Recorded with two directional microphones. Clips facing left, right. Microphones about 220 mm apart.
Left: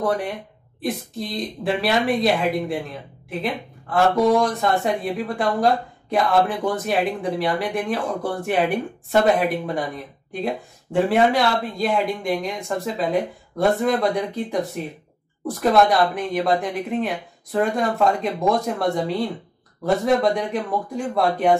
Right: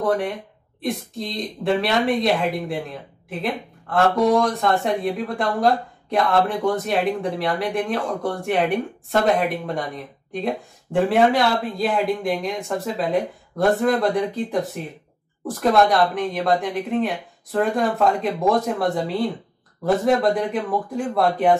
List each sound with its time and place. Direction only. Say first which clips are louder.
0.7 s speech: even; centre (ahead or behind)
10.3 s speech: right 1 dB; centre (ahead or behind)